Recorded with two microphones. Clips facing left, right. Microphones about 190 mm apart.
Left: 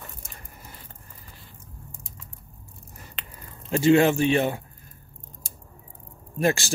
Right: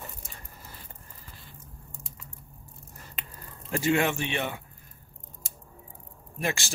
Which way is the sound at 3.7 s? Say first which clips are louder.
Left 7 dB; 25° left (ahead or behind).